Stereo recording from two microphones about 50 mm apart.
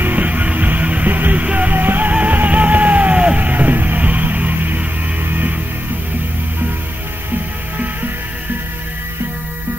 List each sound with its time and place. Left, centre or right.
0.0 s music: right
1.8 s music: right